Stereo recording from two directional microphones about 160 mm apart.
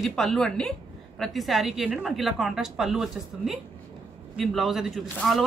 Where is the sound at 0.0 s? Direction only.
Centre (ahead or behind).